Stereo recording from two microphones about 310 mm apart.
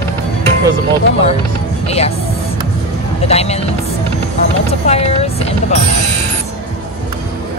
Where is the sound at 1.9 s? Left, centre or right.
Centre.